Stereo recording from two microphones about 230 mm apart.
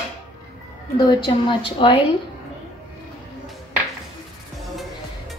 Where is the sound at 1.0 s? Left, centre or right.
Centre.